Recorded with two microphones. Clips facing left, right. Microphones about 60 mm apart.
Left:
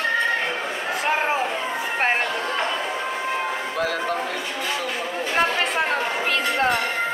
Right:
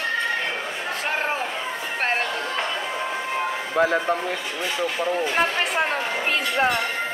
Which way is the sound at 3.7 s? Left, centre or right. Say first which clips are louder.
Right 6 dB; right.